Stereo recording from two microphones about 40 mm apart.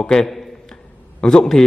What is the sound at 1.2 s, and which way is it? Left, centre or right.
Speech, centre.